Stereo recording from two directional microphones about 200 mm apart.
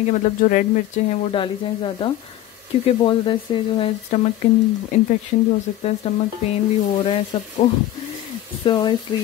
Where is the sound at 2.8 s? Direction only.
25° left (ahead or behind).